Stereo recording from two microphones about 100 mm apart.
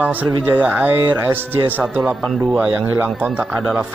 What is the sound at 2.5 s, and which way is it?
Speech, 10° right (ahead or behind).